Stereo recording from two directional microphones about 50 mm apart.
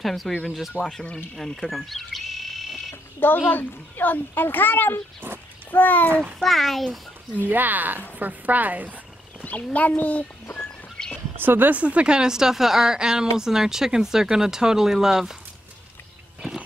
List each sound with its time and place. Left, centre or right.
0.0 s a child's voice: centre
3.3 s a child's voice: left
6.4 s a child's voice: centre
7.4 s a woman's voice: right
9.4 s a child's voice: left
11.3 s a woman's voice: right
11.8 s a woman's voice: right